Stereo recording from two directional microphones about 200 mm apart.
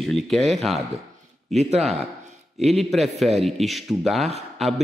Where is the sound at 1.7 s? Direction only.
30° right (ahead or behind).